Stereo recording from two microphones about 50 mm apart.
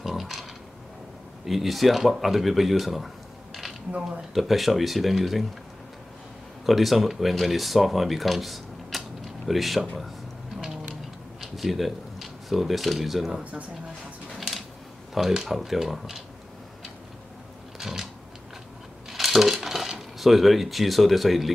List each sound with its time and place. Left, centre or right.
0.0 s a sound: centre
1.4 s speech: centre
4.3 s speech: centre
6.6 s speech: centre
11.5 s speech: centre
13.4 s speech: right
15.1 s speech: centre
17.7 s a sound: centre
19.0 s coin: centre